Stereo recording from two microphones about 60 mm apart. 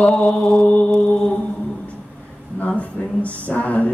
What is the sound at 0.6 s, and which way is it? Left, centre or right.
Mantra, centre.